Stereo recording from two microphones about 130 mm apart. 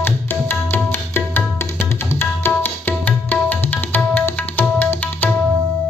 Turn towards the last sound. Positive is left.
turn(degrees=15)  # may be behind; listen again after turning